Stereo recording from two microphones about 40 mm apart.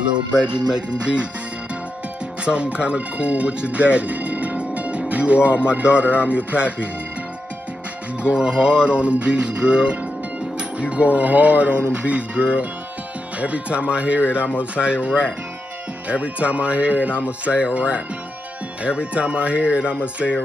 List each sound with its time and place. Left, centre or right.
0.4 s music: right
2.4 s speech: right
8.2 s music: right
10.8 s speech: right